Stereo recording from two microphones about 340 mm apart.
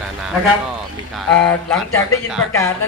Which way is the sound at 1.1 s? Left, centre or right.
Centre.